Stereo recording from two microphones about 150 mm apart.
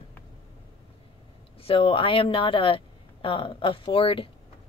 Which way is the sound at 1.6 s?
35° left (ahead or behind).